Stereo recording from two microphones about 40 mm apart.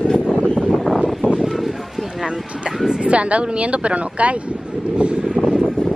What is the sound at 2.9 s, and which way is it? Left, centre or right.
Speech, right.